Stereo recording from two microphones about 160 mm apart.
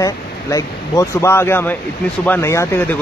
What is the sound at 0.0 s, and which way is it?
Speech, 20° left (ahead or behind).